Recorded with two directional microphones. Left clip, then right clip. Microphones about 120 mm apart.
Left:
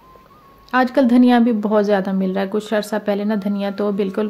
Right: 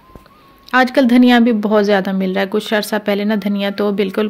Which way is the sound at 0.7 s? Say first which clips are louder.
Right 3 dB; 20° right (ahead or behind).